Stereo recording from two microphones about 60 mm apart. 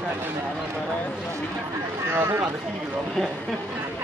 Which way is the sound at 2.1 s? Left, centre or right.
Right.